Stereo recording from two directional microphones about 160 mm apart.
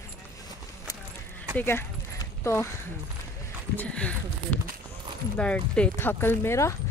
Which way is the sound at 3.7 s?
10° left (ahead or behind).